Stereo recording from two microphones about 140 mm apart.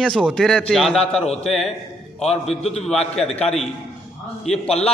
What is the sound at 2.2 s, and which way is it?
Speech, 50° left (ahead or behind).